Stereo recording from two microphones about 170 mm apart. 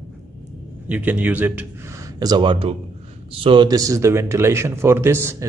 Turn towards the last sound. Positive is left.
turn(degrees=-15)  # may be behind; listen again after turning